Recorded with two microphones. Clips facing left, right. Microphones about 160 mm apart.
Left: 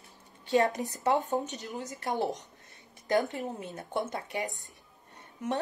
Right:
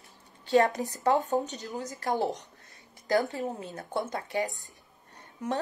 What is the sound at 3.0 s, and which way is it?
Speech, 20° left (ahead or behind).